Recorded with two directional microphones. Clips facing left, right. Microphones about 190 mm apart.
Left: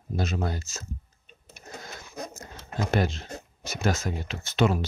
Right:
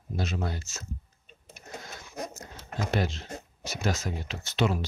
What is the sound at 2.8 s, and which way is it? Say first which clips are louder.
Speech: left 3 dB; 50° left (ahead or behind).